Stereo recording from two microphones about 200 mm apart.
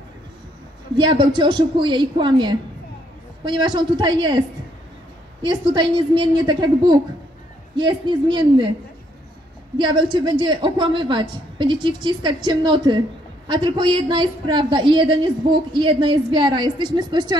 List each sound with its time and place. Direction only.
0.9 s a woman's voice: 25° right (ahead or behind)
5.4 s a woman's voice: 25° right (ahead or behind)
9.8 s a woman's voice: 25° right (ahead or behind)